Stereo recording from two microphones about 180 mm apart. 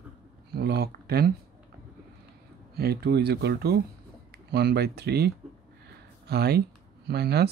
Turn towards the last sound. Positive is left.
turn(degrees=-65)  # may be behind; listen again after turning